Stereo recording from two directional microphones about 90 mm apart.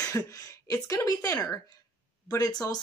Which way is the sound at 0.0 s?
40° left (ahead or behind).